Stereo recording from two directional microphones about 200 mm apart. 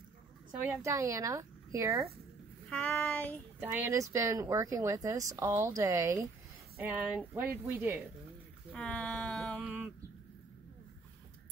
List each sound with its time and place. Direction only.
0.6 s speech: 15° right (ahead or behind)
2.7 s child singing: 10° left (ahead or behind)
3.5 s speech: 10° right (ahead or behind)
8.7 s a sound: 5° left (ahead or behind)